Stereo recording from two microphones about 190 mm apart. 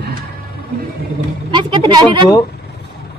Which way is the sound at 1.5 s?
25° right (ahead or behind).